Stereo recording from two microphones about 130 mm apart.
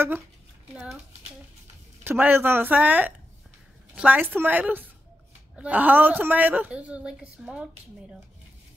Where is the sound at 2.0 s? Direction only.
15° right (ahead or behind).